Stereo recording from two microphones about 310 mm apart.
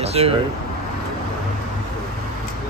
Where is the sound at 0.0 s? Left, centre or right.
Centre.